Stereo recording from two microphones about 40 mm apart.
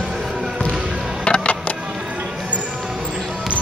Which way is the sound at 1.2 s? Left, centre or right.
Left.